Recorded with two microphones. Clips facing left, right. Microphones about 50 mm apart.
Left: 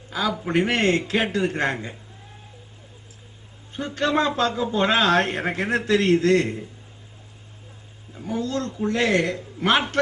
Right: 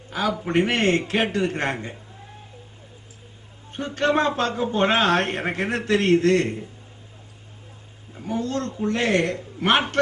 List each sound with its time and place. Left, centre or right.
0.1 s a man's voice: right
3.7 s a man's voice: right
8.2 s a man's voice: right